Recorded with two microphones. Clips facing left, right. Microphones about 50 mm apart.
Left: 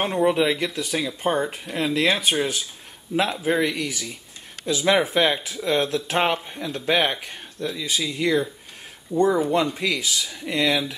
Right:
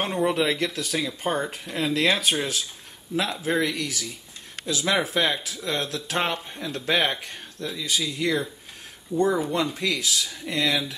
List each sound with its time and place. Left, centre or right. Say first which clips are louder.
0.0 s speech: left 3 dB; centre